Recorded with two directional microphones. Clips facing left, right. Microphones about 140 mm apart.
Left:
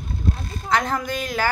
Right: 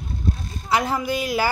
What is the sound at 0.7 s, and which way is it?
Speech, 5° right (ahead or behind).